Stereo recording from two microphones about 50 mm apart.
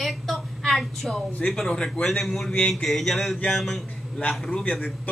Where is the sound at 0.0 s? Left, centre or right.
Centre.